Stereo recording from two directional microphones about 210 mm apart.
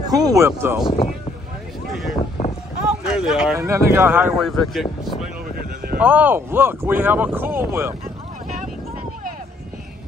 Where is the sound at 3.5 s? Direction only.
15° right (ahead or behind).